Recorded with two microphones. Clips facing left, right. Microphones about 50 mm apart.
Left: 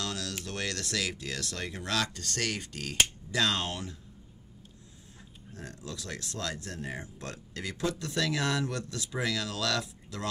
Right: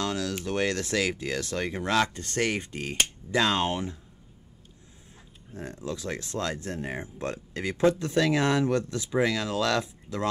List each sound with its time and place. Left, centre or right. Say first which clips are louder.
0.0 s speech: right 7 dB; right
5.5 s speech: right 8 dB; right